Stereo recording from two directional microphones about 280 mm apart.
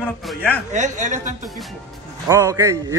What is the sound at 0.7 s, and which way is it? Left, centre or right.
Speech, right.